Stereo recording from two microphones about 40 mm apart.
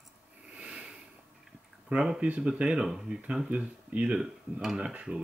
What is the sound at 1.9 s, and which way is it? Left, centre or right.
Speech, right.